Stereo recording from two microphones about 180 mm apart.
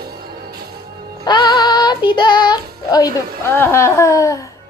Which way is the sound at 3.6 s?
15° left (ahead or behind).